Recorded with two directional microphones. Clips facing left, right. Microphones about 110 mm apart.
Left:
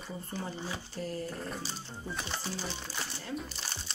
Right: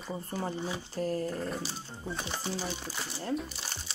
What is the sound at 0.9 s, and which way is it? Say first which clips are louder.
Speech: right 7 dB; 45° right (ahead or behind).